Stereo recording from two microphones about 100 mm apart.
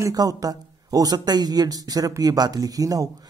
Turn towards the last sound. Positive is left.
turn(degrees=-35)  # may be behind; listen again after turning